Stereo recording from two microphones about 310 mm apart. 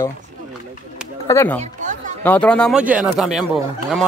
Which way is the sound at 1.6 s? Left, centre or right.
Right.